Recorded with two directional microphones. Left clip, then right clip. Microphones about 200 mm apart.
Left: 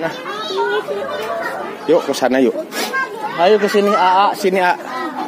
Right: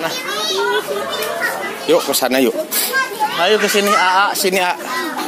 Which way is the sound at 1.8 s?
20° left (ahead or behind).